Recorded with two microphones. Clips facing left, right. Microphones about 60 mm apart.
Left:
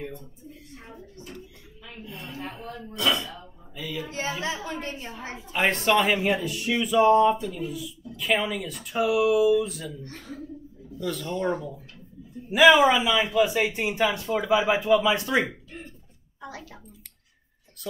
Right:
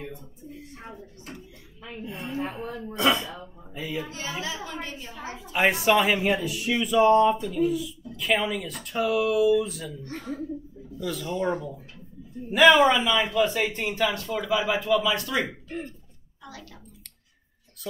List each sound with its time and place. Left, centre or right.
1.3 s a sound: centre
2.1 s speech: right
2.4 s a woman's voice: centre
2.9 s speech: right
4.8 s a woman's voice: left
5.5 s speech: centre
10.0 s speech: right
11.0 s a man's voice: centre; by 15.5 s left
16.3 s a sound: left